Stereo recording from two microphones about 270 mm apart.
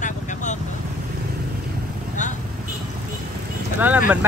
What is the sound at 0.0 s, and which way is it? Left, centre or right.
Vehicle, left.